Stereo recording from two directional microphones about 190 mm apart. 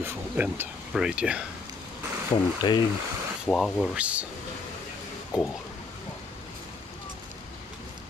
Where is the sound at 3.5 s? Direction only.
5° left (ahead or behind).